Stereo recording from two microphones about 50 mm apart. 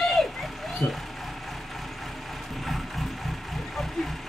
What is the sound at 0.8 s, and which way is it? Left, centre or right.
Vehicle, left.